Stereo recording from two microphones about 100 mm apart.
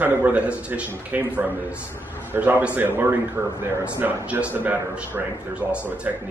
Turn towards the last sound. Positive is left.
turn(degrees=-15)  # may be behind; listen again after turning